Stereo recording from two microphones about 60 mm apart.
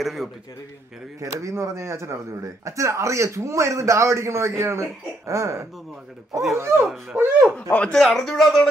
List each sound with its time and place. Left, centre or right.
0.0 s a man's voice: centre
1.2 s speech: right
7.2 s speech: right
7.9 s speech: centre